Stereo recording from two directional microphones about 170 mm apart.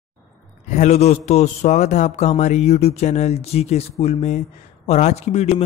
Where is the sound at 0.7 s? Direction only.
45° left (ahead or behind).